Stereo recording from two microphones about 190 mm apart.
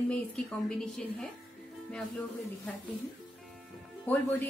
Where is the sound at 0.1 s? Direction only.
5° left (ahead or behind).